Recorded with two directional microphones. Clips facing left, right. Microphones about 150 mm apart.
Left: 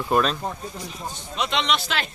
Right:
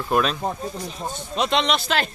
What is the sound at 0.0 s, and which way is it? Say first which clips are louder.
Speech: even; centre (ahead or behind).